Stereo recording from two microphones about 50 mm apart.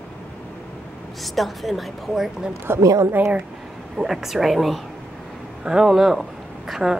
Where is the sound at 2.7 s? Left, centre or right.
Right.